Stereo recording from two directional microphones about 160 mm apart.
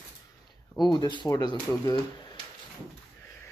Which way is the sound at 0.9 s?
30° left (ahead or behind).